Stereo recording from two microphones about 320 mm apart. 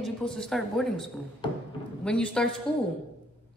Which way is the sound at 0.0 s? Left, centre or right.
Centre.